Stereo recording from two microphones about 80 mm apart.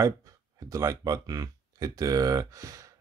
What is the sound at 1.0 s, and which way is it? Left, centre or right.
Speech, right.